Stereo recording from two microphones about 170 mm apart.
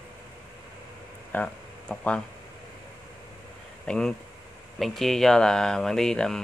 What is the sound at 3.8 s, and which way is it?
Speech, 5° left (ahead or behind).